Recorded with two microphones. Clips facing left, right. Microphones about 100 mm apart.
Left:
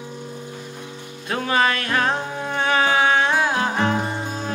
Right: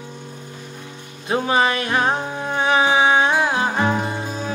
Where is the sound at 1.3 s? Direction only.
20° right (ahead or behind).